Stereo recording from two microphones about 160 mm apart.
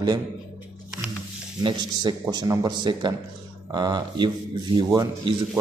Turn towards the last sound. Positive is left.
turn(degrees=-25)  # may be behind; listen again after turning